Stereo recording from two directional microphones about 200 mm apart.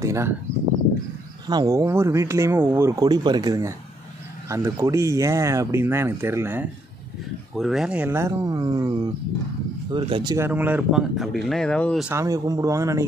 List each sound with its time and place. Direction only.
0.0 s speech: 15° right (ahead or behind)
1.5 s speech: 15° right (ahead or behind)
7.5 s speech: centre (ahead or behind)
12.1 s speech: 15° right (ahead or behind)